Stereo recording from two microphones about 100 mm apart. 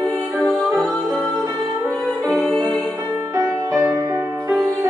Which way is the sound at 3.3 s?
30° right (ahead or behind).